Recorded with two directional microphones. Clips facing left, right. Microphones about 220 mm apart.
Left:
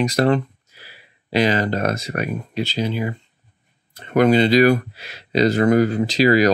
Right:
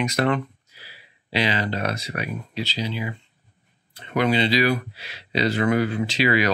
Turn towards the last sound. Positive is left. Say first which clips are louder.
# left 6 dB
turn(degrees=40)  # may be behind; listen again after turning